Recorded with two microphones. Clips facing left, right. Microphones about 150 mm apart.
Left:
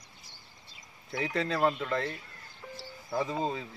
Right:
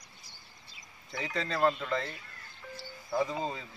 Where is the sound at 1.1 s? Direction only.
5° left (ahead or behind).